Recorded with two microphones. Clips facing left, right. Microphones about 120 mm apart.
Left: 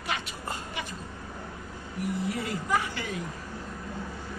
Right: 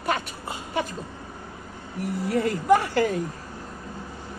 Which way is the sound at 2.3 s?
60° right (ahead or behind).